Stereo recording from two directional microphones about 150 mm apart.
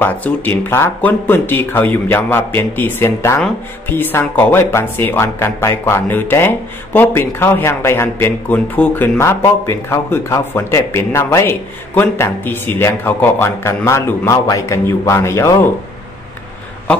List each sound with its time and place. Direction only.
0.0 s speech: 15° left (ahead or behind)